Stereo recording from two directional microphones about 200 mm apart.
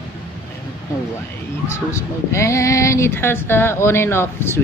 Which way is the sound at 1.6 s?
15° left (ahead or behind).